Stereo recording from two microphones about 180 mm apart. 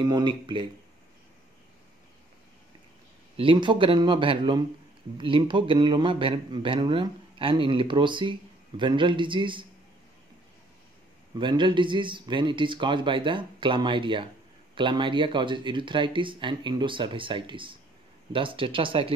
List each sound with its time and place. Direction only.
0.0 s speech: 25° right (ahead or behind)
3.3 s speech: 30° right (ahead or behind)
11.3 s speech: 25° right (ahead or behind)